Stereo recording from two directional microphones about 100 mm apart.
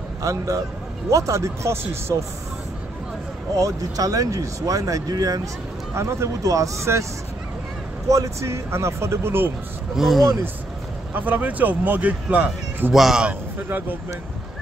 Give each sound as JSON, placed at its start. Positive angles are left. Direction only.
{"t": 0.2, "sound": "speech", "side_deg": -30}
{"t": 3.5, "sound": "speech", "side_deg": -35}
{"t": 8.1, "sound": "speech", "side_deg": -35}
{"t": 9.9, "sound": "speech", "side_deg": 0}
{"t": 11.1, "sound": "speech", "side_deg": -15}
{"t": 12.9, "sound": "speech", "side_deg": -5}
{"t": 13.3, "sound": "a man's voice", "side_deg": -20}